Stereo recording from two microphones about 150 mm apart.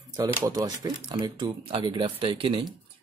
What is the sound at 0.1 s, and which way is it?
Speech, 25° right (ahead or behind).